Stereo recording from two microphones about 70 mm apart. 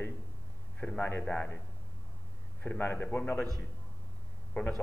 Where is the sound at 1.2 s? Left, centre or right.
Centre.